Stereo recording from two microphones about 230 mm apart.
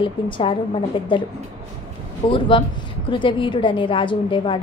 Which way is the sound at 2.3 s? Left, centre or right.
Left.